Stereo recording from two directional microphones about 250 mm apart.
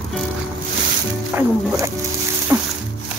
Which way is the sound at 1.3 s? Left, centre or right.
Centre.